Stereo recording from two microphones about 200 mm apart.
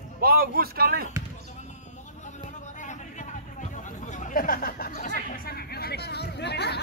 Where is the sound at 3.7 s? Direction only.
40° left (ahead or behind).